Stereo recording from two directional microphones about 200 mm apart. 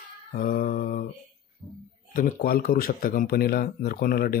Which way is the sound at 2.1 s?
45° left (ahead or behind).